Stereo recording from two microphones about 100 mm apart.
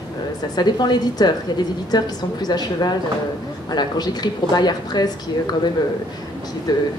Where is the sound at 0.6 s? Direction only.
45° left (ahead or behind).